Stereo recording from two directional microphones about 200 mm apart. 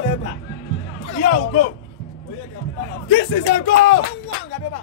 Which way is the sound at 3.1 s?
60° left (ahead or behind).